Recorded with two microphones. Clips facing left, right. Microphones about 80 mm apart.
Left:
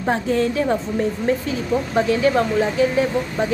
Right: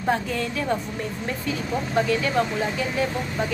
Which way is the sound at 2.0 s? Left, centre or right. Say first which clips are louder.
Left 4 dB; left.